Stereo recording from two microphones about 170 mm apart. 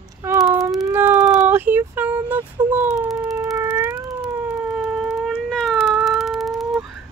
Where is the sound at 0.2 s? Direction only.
15° right (ahead or behind).